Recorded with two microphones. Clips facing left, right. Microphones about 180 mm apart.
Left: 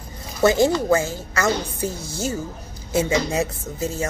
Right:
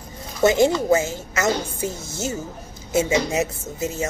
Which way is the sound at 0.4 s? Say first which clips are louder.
Even; 25° right (ahead or behind).